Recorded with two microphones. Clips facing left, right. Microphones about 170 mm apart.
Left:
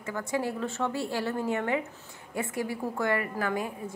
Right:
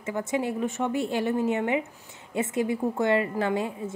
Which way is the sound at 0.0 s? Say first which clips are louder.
Right 3 dB; 20° right (ahead or behind).